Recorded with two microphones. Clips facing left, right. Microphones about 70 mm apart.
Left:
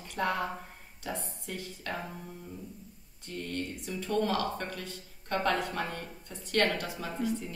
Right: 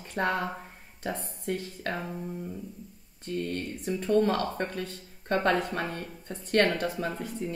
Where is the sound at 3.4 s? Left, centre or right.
Right.